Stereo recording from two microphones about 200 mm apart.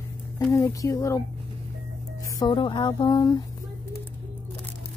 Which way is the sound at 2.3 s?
25° left (ahead or behind).